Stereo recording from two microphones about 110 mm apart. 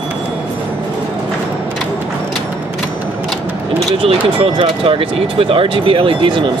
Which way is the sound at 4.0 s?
55° right (ahead or behind).